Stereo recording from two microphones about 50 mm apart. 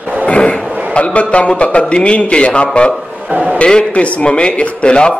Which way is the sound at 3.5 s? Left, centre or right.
Left.